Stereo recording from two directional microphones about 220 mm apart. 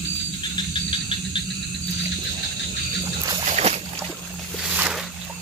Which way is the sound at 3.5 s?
30° right (ahead or behind).